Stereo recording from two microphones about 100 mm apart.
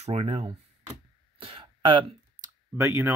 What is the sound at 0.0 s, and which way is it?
Speech, 80° right.